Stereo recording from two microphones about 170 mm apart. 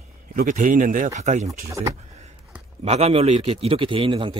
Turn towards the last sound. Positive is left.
turn(degrees=-30)  # may be behind; listen again after turning